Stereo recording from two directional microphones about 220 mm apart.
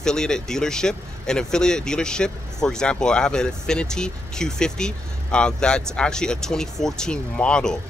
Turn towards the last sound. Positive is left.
turn(degrees=5)  # may be behind; listen again after turning